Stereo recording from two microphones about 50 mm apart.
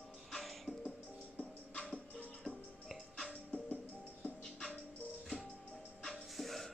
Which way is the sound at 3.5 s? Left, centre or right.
Left.